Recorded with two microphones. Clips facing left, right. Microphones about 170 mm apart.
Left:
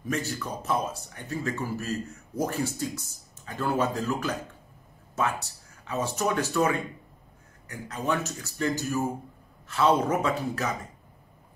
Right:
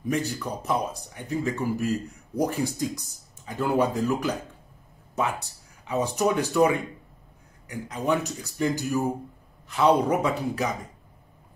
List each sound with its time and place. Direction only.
0.0 s speech: 15° right (ahead or behind)